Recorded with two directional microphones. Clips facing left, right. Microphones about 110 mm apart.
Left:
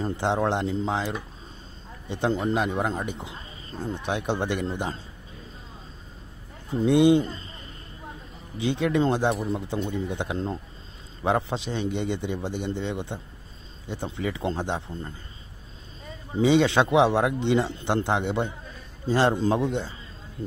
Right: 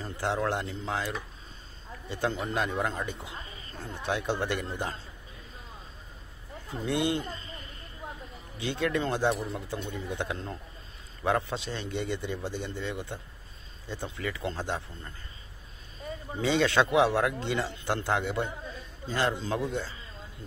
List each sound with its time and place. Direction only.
0.0 s a man's voice: 25° left (ahead or behind)
6.7 s a man's voice: 20° left (ahead or behind)
7.2 s a sound: 30° left (ahead or behind)
8.5 s a man's voice: 15° left (ahead or behind)
16.4 s a man's voice: 20° left (ahead or behind)